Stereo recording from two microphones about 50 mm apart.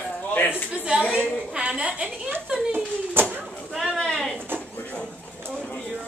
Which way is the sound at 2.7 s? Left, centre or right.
Right.